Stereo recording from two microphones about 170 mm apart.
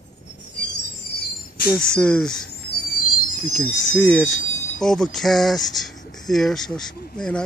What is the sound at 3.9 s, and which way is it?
Speech, centre (ahead or behind).